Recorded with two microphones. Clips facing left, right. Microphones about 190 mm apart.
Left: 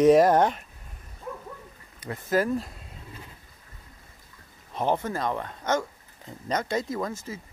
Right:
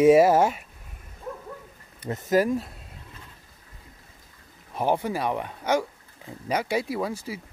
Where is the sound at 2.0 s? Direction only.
15° right (ahead or behind).